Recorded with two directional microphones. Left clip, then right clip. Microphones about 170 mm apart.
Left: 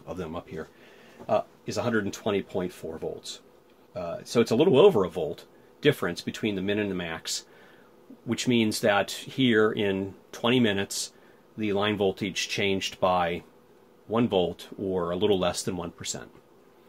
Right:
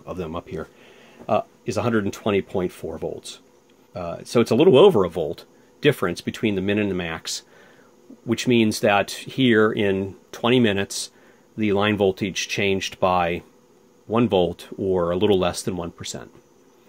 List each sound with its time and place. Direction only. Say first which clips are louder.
0.0 s speech: right 5 dB; 25° right (ahead or behind)
0.3 s speech: right 5 dB; 40° right (ahead or behind)
11.5 s speech: right 6 dB; 50° right (ahead or behind)
15.4 s speech: right 4 dB; 30° right (ahead or behind)